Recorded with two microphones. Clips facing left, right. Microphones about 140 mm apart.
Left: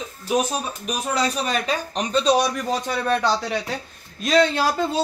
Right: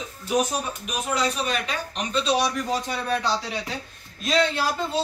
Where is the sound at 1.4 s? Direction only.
40° left (ahead or behind).